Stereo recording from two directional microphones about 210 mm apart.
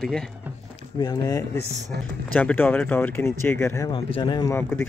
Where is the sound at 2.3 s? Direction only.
10° left (ahead or behind).